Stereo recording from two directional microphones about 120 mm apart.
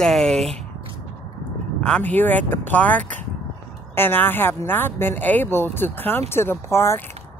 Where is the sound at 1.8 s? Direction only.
10° left (ahead or behind).